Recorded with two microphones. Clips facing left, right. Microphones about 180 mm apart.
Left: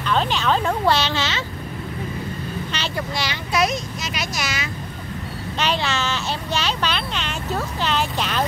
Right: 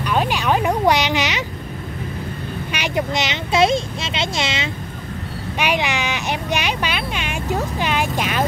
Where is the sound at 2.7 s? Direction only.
15° right (ahead or behind).